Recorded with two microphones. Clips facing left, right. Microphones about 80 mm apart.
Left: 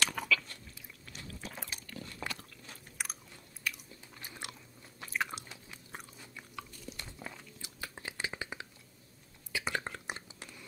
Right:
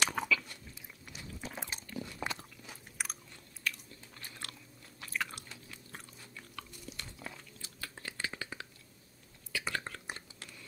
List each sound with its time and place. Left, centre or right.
0.0 s biting: centre
1.4 s a sound: right
3.0 s chewing: centre
3.6 s biting: centre
5.0 s chewing: left
9.5 s whispering: centre